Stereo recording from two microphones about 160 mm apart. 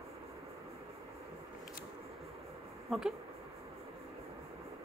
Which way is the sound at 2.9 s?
Centre (ahead or behind).